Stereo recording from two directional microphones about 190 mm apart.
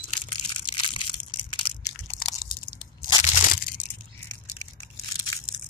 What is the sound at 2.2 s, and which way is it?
Crunch, 25° left (ahead or behind).